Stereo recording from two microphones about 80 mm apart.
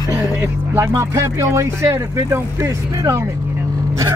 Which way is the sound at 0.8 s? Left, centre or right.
Right.